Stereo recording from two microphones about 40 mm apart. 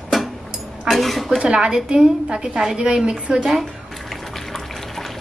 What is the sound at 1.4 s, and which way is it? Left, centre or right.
A woman's voice, right.